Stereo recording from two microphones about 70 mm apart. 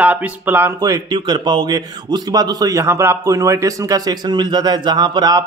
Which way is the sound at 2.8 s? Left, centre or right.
Right.